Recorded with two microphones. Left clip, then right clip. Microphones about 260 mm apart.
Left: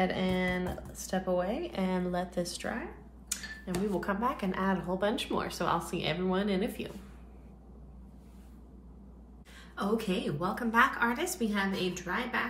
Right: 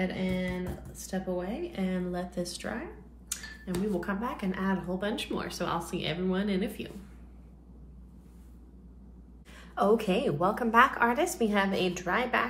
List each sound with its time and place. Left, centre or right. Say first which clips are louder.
0.1 s speech: left 3 dB; centre
9.8 s a woman's voice: right 7 dB; centre